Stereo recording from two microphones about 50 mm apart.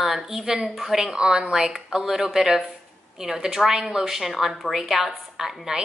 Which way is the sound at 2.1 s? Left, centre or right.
Centre.